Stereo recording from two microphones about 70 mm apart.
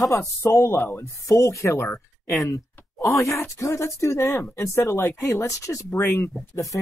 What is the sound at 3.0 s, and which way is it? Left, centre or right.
Speech, left.